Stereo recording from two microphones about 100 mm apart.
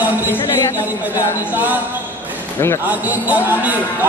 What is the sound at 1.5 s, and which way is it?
Speech, 15° right (ahead or behind).